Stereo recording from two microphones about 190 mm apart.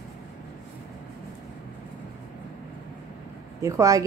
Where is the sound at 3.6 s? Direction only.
15° right (ahead or behind).